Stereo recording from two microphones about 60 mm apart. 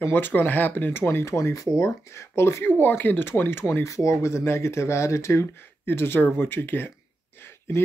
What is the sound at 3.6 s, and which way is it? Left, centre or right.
Speech, left.